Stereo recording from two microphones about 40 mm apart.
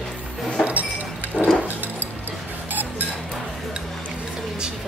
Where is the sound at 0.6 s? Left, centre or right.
Right.